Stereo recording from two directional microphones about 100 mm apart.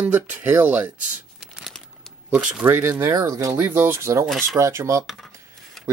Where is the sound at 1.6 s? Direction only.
Centre (ahead or behind).